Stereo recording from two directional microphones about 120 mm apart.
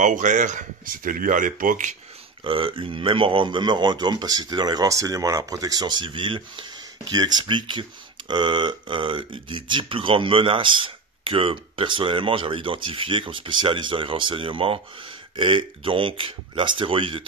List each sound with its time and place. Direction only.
0.0 s speech: 90° right
2.4 s speech: 45° right (ahead or behind)